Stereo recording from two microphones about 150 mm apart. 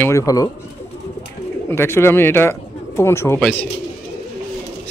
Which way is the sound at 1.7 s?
15° left (ahead or behind).